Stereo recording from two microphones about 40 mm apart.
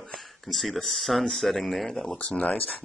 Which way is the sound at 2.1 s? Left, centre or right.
Left.